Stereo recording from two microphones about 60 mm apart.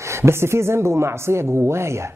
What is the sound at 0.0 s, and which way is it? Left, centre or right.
Speech, right.